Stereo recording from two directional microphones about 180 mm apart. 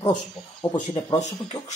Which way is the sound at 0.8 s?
40° left (ahead or behind).